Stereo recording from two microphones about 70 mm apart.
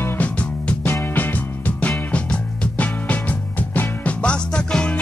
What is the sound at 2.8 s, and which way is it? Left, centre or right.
Music, left.